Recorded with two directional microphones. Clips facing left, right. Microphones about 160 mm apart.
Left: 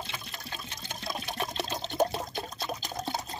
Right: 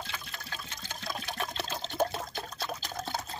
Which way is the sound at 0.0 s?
20° left (ahead or behind).